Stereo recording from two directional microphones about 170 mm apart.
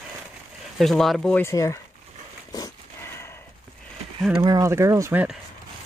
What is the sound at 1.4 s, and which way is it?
Speech, 20° left (ahead or behind).